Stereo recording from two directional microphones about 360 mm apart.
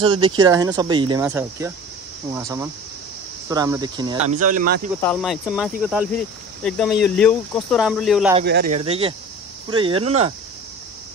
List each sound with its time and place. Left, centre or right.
0.0 s speech: centre
5.0 s speech: centre
8.4 s speech: right
8.7 s speech: centre